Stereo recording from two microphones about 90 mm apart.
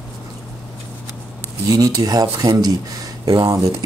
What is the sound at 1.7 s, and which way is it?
Speech, 45° right (ahead or behind).